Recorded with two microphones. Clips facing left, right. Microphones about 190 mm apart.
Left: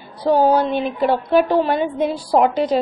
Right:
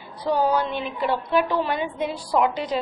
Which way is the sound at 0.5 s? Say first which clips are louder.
Left 6 dB; 35° left (ahead or behind).